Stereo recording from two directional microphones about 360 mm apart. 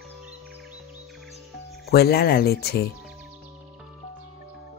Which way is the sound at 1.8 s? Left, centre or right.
Left.